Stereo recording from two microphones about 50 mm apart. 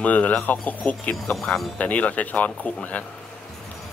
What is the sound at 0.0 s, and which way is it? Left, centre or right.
Speech, left.